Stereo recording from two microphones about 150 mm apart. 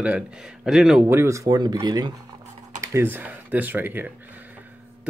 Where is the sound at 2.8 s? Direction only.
15° right (ahead or behind).